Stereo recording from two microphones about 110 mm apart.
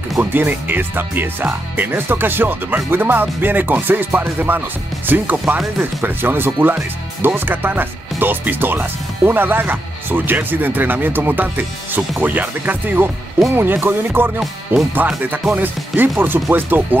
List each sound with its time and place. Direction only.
0.2 s speech: 20° right (ahead or behind)
14.4 s speech: centre (ahead or behind)
15.0 s speech: 15° right (ahead or behind)